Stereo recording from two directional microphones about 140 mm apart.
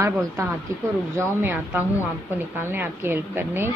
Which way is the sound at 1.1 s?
15° right (ahead or behind).